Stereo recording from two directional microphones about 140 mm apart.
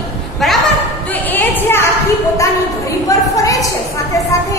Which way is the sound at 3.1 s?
25° left (ahead or behind).